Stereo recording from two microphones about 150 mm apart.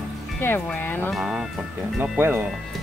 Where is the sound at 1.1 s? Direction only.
5° right (ahead or behind).